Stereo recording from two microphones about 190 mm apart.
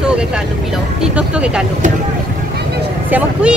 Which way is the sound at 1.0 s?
5° right (ahead or behind).